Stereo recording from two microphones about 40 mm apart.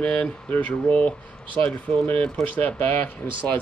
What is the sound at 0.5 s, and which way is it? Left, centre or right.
Speech, left.